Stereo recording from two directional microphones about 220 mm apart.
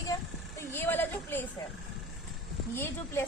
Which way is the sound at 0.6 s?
10° left (ahead or behind).